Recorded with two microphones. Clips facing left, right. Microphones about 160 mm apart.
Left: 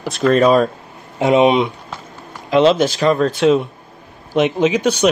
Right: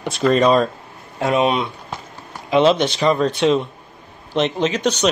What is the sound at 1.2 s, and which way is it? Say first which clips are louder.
Speech: left 5 dB; 20° left (ahead or behind).